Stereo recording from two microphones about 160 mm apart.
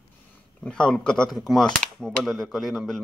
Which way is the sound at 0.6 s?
5° left (ahead or behind).